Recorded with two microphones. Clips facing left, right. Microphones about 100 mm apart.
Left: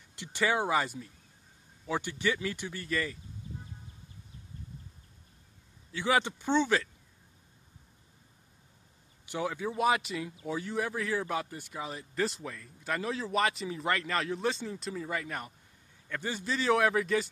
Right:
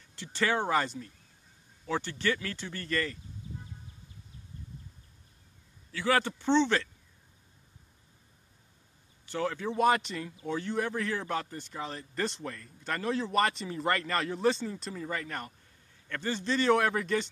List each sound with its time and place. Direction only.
0.1 s speech: 15° left (ahead or behind)
5.9 s speech: 20° left (ahead or behind)
9.2 s speech: 15° left (ahead or behind)